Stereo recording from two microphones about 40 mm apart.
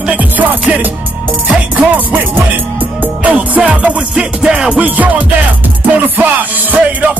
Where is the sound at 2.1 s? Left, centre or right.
Right.